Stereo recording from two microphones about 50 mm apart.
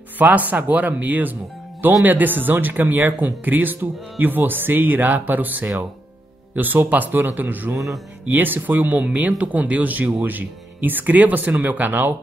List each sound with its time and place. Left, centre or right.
0.2 s speech: right